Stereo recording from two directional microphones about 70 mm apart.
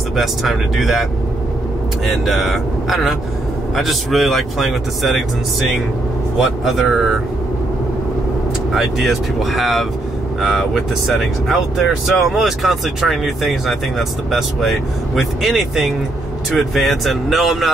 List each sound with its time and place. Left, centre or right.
0.1 s speech: centre
2.2 s speech: centre
6.6 s speech: centre
8.7 s speech: centre